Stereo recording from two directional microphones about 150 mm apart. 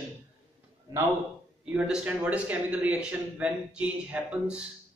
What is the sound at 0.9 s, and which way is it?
Speech, 20° right (ahead or behind).